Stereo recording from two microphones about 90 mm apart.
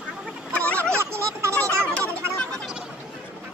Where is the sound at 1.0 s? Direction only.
30° right (ahead or behind).